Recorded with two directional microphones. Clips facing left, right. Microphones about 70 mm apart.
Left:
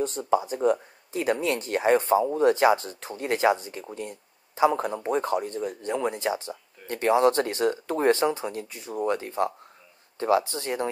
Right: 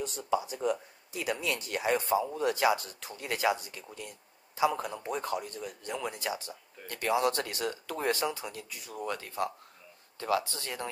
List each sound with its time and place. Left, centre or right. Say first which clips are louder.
0.0 s speech: left 7 dB; left